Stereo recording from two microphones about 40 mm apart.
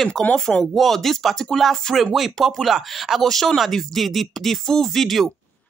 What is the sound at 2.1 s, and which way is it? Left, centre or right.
A woman's voice, centre.